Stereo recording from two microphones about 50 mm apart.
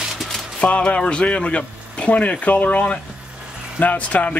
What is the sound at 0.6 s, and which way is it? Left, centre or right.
Speech, left.